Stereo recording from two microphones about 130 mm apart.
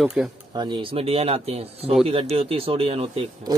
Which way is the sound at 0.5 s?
35° right (ahead or behind).